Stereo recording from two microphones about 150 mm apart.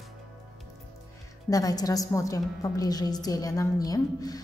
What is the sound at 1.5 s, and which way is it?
A woman's voice, 25° left (ahead or behind).